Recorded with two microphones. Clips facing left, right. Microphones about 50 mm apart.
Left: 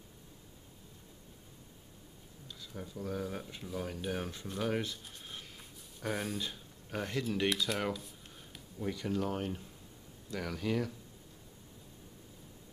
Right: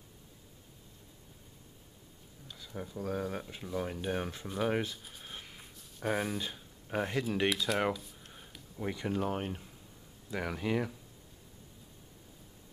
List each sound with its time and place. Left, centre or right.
2.4 s speech: centre
5.0 s a sound: centre
5.9 s speech: centre
7.4 s speech: centre
8.7 s speech: right